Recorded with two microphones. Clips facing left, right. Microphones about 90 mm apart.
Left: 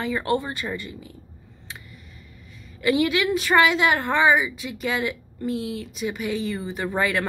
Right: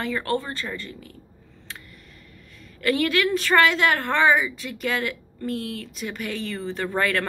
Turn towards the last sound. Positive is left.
turn(degrees=10)  # may be behind; listen again after turning